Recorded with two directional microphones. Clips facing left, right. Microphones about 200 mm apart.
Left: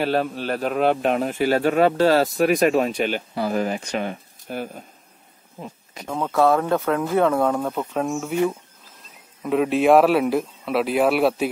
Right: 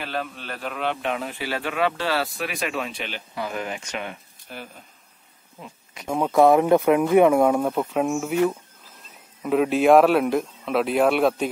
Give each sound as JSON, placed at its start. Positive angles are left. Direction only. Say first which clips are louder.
{"t": 0.0, "sound": "a man's voice", "louder": "left 9 dB", "side_deg": 35}
{"t": 6.0, "sound": "speech", "louder": "right 2 dB", "side_deg": -15}
{"t": 9.4, "sound": "speech", "louder": "even", "side_deg": 0}